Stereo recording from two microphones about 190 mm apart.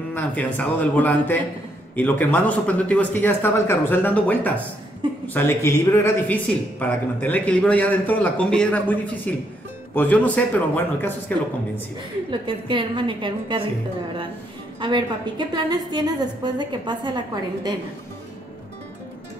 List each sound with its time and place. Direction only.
0.1 s speech: 10° left (ahead or behind)
12.3 s a woman's voice: 25° right (ahead or behind)
14.8 s a woman's voice: 25° right (ahead or behind)